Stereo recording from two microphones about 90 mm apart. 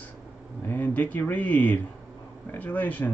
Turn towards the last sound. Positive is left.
turn(degrees=20)  # may be behind; listen again after turning